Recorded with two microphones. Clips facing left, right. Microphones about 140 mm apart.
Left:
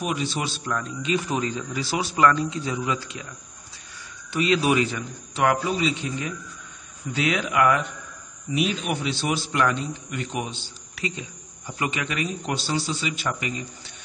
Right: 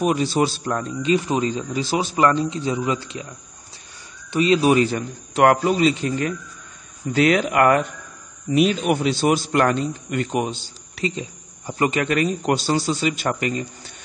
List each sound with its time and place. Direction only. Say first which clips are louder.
0.0 s speech: right 8 dB; 40° right (ahead or behind)
4.4 s a man's voice: right 5 dB; 30° right (ahead or behind)
5.4 s a man's voice: right 6 dB; 55° right (ahead or behind)
7.1 s a man's voice: right 7 dB; 50° right (ahead or behind)
11.0 s a sound: right 6 dB; 30° right (ahead or behind)
11.8 s a man's voice: right 8 dB; 50° right (ahead or behind)